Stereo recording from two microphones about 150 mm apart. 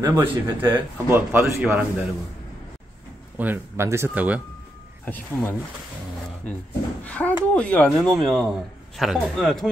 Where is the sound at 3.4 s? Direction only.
15° right (ahead or behind).